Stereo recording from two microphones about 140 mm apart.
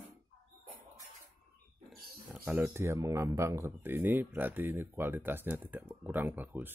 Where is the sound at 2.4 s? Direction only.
10° right (ahead or behind).